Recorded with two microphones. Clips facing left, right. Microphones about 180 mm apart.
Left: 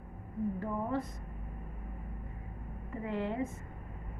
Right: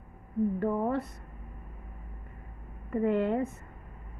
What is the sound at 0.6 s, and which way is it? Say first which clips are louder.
Speech: right 6 dB; 65° right (ahead or behind).